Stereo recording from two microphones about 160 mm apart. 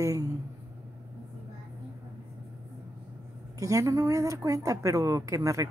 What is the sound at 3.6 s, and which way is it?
Speech, 20° right (ahead or behind).